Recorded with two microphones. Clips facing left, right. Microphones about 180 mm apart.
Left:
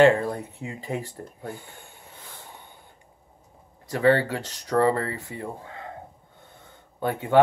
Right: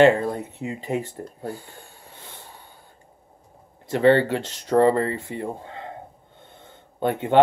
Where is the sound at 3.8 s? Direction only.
25° right (ahead or behind).